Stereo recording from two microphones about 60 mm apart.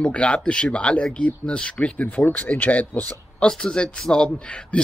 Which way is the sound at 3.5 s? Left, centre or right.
Centre.